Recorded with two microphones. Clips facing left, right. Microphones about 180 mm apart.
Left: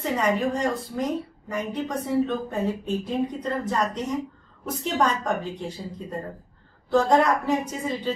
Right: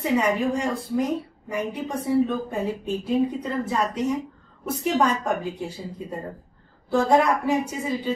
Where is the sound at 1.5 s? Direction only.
10° right (ahead or behind).